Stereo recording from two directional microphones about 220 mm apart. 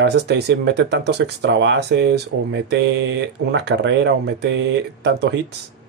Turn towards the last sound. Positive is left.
turn(degrees=-50)  # may be behind; listen again after turning